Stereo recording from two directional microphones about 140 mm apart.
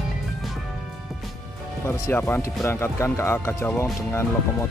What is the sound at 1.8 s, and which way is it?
Speech, 15° left (ahead or behind).